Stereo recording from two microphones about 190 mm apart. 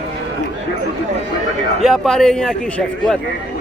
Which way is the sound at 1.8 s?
Centre (ahead or behind).